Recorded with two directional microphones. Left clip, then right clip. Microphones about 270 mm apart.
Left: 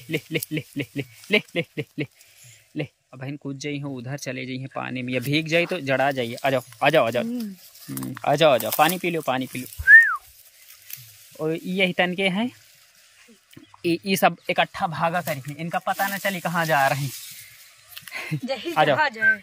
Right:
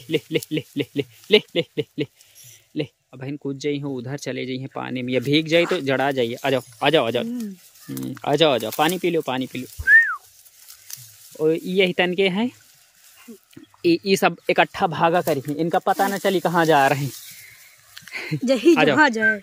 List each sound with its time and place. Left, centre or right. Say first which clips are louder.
0.1 s speech: right 4 dB; centre
11.3 s speech: right 6 dB; centre
13.8 s speech: right 2 dB; centre
17.9 s a sound: right 2 dB; centre
18.4 s speech: right 15 dB; right